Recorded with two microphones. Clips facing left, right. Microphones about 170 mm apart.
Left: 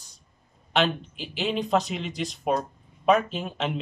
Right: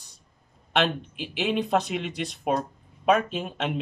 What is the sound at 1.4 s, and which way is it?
A man's voice, centre (ahead or behind).